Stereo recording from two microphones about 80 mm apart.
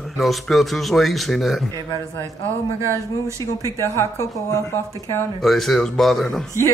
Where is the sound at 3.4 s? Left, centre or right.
Left.